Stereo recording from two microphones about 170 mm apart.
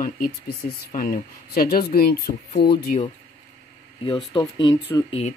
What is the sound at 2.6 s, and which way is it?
Speech, 75° left (ahead or behind).